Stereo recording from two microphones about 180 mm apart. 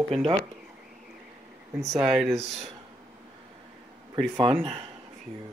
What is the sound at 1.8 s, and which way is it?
Speech, 15° right (ahead or behind).